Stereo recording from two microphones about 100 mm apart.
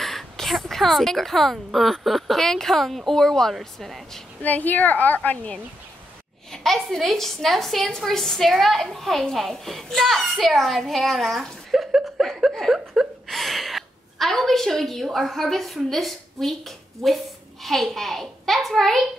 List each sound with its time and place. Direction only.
0.0 s a child's voice: centre (ahead or behind)
4.4 s a woman's voice: 15° left (ahead or behind)
6.5 s a child's voice: centre (ahead or behind)